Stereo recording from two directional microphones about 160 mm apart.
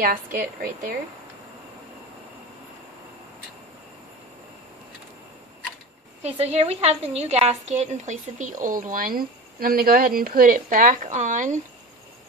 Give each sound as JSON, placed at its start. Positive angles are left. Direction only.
{"t": 0.0, "sound": "a woman's voice", "side_deg": -60}
{"t": 6.2, "sound": "a woman's voice", "side_deg": -40}